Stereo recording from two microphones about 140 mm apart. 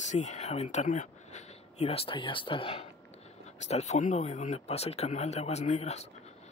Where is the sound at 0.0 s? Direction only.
55° left (ahead or behind); by 2.8 s 40° left (ahead or behind).